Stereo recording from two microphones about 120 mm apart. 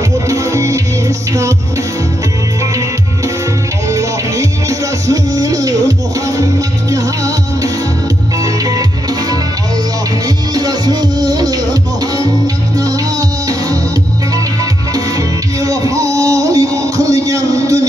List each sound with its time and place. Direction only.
0.3 s music: 25° right (ahead or behind)
3.9 s music: 25° right (ahead or behind)
10.2 s music: 35° right (ahead or behind)
15.6 s a sound: 30° right (ahead or behind)